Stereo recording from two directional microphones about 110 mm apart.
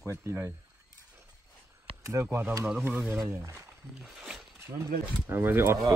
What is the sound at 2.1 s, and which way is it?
Speech, 25° right (ahead or behind).